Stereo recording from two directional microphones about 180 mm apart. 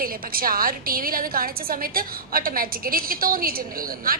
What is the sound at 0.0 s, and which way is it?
A woman's voice, 55° right (ahead or behind).